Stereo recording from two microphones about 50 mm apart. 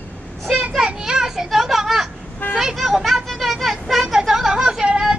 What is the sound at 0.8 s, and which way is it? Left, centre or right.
Children playing, centre.